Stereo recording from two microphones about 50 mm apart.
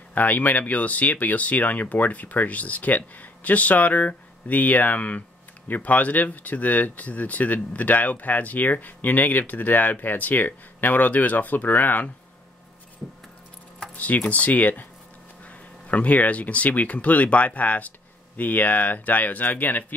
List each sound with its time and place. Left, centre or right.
0.1 s speech: left
13.9 s speech: left